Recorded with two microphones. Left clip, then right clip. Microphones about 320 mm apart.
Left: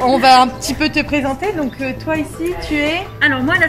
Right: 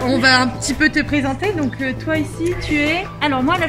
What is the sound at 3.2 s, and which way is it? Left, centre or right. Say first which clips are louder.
Speech: left 5 dB; centre.